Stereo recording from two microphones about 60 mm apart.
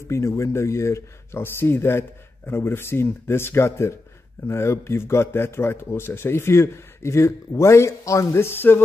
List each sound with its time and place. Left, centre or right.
0.1 s a man's voice: left